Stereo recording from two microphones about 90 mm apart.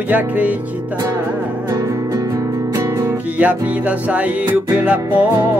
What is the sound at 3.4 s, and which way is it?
Music, 15° right (ahead or behind).